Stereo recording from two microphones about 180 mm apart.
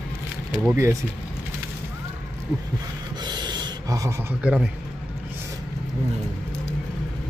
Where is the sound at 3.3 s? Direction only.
25° right (ahead or behind).